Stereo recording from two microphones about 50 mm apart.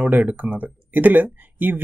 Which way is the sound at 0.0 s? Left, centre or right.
Right.